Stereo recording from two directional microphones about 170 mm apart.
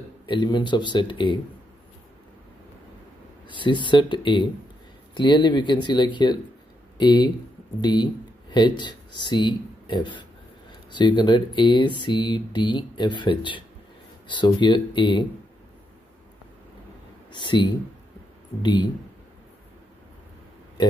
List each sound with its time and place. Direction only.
0.3 s speech: 25° left (ahead or behind)
3.4 s speech: 30° left (ahead or behind)
17.3 s speech: 25° left (ahead or behind)